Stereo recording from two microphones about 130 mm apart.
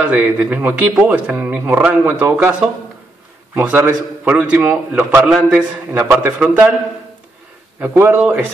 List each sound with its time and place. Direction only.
0.0 s a man's voice: 10° right (ahead or behind)
3.5 s a man's voice: 15° right (ahead or behind)
7.8 s a man's voice: 15° right (ahead or behind)